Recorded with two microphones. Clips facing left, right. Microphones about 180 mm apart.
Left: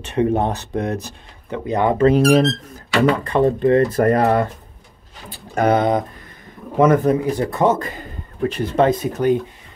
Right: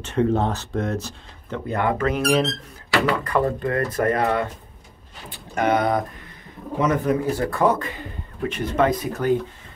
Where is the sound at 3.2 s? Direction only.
25° left (ahead or behind).